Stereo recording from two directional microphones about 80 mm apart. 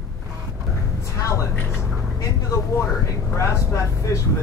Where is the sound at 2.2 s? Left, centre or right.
Left.